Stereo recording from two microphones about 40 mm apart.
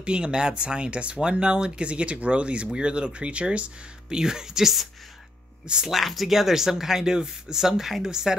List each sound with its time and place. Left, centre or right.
0.0 s speech: right
4.1 s speech: centre
5.9 s speech: centre